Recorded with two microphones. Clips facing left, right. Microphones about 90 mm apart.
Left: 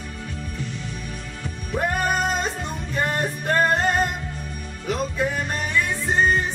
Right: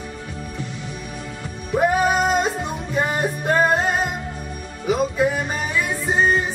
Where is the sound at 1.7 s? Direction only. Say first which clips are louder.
Right 5 dB; 5° right (ahead or behind).